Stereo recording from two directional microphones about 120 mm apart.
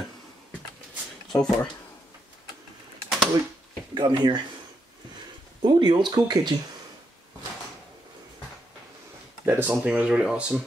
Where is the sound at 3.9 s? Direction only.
40° right (ahead or behind).